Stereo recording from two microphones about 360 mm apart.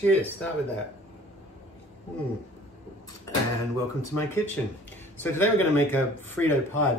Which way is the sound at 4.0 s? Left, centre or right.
Centre.